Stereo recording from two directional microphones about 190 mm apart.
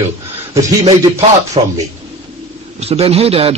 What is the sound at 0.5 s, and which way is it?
Speech, 30° right (ahead or behind).